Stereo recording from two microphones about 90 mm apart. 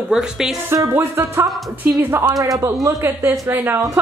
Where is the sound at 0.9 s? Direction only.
25° right (ahead or behind).